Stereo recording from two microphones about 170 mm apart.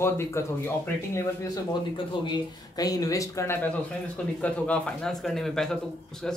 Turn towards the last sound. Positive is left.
turn(degrees=5)  # may be behind; listen again after turning